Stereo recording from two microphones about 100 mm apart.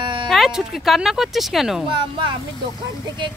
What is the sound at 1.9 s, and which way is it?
Speech, 55° right (ahead or behind).